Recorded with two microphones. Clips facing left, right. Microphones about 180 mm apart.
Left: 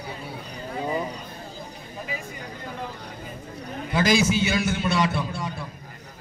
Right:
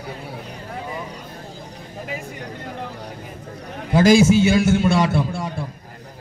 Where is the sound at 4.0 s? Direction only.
50° right (ahead or behind).